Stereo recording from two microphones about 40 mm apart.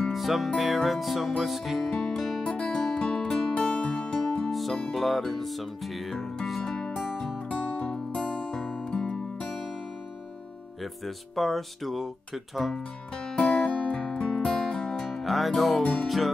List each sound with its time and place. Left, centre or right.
0.1 s music: centre
1.9 s music: centre
3.3 s music: centre
3.6 s music: left
4.5 s music: centre
7.4 s music: left
10.8 s music: centre
13.4 s music: left
15.2 s music: centre
15.8 s music: left